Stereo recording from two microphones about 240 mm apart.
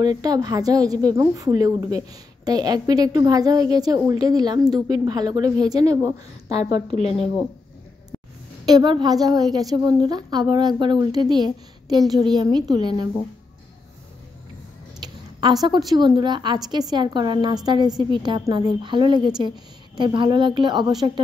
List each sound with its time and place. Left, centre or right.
0.0 s a woman's voice: centre
6.9 s speech: left
8.6 s a woman's voice: centre
15.0 s a sound: centre
15.9 s a woman's voice: centre